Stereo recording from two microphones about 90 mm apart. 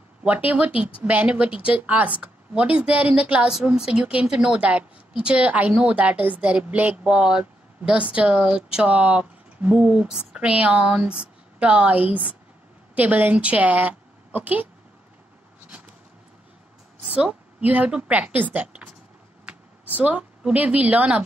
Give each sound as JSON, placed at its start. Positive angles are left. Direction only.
{"t": 0.2, "sound": "a woman's voice", "side_deg": -15}
{"t": 17.1, "sound": "a woman's voice", "side_deg": -10}
{"t": 20.0, "sound": "speech", "side_deg": -15}